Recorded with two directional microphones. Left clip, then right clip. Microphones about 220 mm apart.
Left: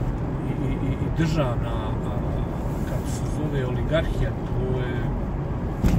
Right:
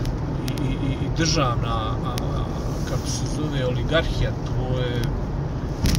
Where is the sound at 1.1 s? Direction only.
30° right (ahead or behind).